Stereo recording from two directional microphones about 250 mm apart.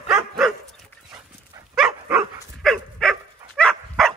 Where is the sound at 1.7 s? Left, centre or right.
Centre.